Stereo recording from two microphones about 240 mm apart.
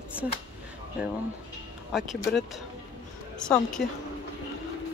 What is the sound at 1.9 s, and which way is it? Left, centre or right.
Speech, centre.